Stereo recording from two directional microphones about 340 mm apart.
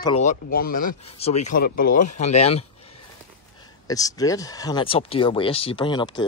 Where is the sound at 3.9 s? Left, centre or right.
Centre.